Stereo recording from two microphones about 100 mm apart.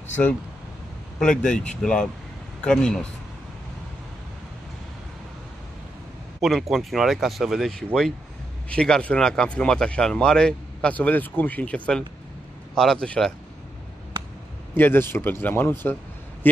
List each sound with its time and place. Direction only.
1.2 s speech: 5° left (ahead or behind)
6.4 s speech: centre (ahead or behind)
14.8 s speech: 20° left (ahead or behind)